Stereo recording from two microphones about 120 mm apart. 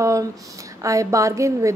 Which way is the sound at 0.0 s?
25° right (ahead or behind).